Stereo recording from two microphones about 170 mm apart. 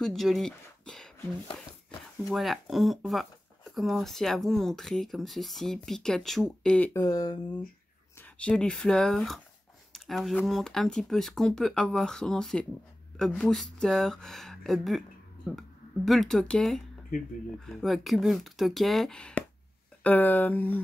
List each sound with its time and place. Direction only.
0.0 s speech: centre (ahead or behind)
6.9 s speech: 20° left (ahead or behind)
8.2 s speech: 5° left (ahead or behind)